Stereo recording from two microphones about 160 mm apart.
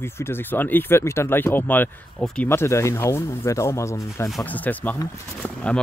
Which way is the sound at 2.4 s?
15° left (ahead or behind).